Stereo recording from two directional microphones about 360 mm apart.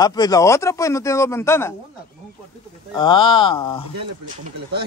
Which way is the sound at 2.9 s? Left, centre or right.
Centre.